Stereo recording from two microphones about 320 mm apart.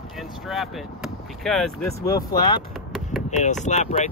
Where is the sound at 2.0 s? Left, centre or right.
Centre.